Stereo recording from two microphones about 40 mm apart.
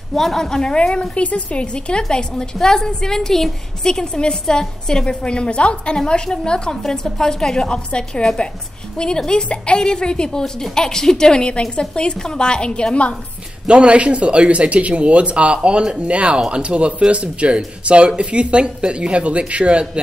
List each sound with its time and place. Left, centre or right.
0.1 s a woman's voice: centre; by 1.0 s left
1.1 s a woman's voice: left
13.7 s speech: right